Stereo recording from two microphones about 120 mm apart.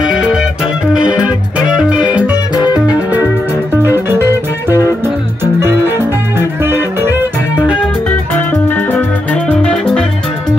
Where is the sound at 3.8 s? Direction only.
20° right (ahead or behind).